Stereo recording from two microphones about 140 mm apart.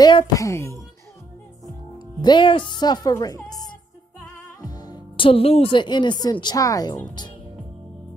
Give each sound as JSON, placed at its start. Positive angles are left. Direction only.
{"t": 0.0, "sound": "speech", "side_deg": 30}
{"t": 0.4, "sound": "speech", "side_deg": 20}
{"t": 2.0, "sound": "speech", "side_deg": 30}
{"t": 4.6, "sound": "music", "side_deg": 30}
{"t": 6.2, "sound": "speech", "side_deg": 30}